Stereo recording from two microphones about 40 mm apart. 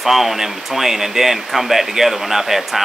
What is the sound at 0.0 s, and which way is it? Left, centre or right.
Speech, centre.